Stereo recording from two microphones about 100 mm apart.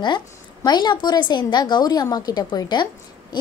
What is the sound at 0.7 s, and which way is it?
A woman's voice, 45° left (ahead or behind).